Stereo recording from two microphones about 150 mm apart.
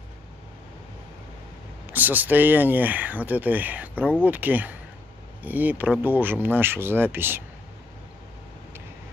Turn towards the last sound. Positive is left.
turn(degrees=-15)  # may be behind; listen again after turning